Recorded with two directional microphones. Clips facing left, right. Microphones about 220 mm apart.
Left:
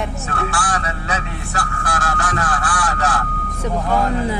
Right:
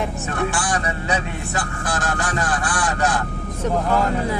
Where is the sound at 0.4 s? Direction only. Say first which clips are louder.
Right 1 dB; 15° right (ahead or behind).